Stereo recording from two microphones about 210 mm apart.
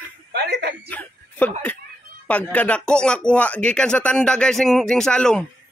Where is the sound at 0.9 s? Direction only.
10° left (ahead or behind).